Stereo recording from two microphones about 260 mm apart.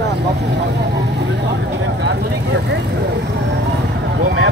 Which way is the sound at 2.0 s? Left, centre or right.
Right.